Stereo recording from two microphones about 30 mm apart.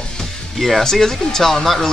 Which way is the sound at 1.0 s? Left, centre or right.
Centre.